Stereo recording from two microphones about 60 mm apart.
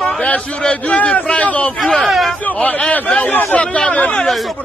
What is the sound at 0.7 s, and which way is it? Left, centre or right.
A man's voice, left.